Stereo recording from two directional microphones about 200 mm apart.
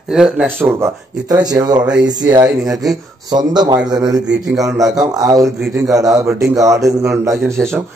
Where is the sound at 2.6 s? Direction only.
Centre (ahead or behind).